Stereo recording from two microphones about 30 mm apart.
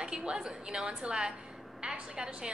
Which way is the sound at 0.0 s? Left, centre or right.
Right.